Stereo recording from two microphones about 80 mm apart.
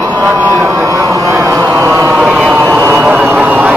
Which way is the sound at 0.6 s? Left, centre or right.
Right.